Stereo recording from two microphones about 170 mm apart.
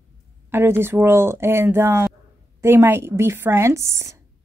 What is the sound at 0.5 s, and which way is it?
A woman's voice, 15° right (ahead or behind).